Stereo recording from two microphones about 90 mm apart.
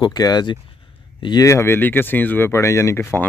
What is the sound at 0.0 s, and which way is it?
Speech, 50° left (ahead or behind).